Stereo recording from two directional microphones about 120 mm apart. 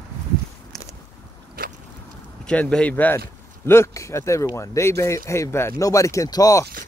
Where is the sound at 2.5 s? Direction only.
5° left (ahead or behind).